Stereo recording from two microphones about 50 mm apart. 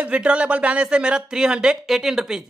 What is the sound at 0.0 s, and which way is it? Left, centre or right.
Speech, right.